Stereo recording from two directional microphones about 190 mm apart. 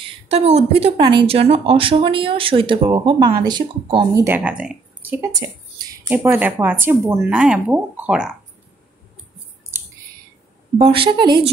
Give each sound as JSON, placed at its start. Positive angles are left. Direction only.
{"t": 0.0, "sound": "a woman's voice", "side_deg": -35}
{"t": 4.4, "sound": "speech", "side_deg": -5}
{"t": 10.8, "sound": "a woman's voice", "side_deg": -30}